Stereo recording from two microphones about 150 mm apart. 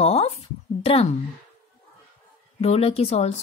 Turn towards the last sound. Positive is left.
turn(degrees=45)  # may be behind; listen again after turning